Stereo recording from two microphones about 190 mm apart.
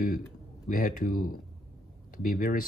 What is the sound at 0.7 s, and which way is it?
Speech, 50° left (ahead or behind).